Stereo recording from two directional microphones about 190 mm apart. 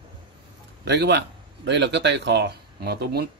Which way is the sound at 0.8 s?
65° right (ahead or behind).